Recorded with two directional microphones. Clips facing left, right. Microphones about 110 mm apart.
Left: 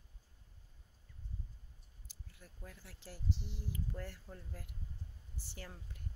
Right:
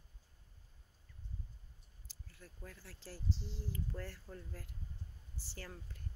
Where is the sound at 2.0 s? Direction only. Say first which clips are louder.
Right 1 dB; 15° left (ahead or behind).